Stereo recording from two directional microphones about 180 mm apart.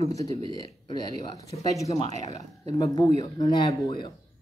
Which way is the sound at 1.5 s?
20° left (ahead or behind).